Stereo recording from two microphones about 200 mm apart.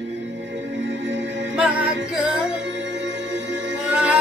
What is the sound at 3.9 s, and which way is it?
Music, 5° right (ahead or behind).